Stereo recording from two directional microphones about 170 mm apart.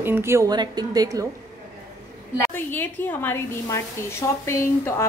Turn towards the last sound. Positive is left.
turn(degrees=15)  # may be behind; listen again after turning